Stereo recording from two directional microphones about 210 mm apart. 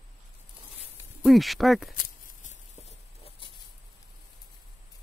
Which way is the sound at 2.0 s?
40° left (ahead or behind).